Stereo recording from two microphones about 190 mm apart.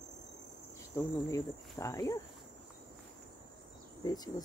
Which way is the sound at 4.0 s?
20° left (ahead or behind).